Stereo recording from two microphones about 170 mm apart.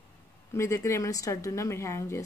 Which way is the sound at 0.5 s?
15° left (ahead or behind).